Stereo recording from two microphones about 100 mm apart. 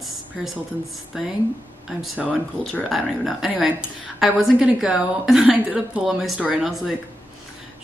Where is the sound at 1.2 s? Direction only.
5° right (ahead or behind).